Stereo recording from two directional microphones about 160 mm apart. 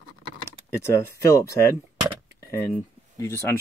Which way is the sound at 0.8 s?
15° left (ahead or behind).